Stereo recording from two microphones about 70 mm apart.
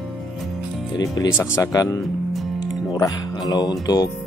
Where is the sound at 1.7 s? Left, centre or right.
Left.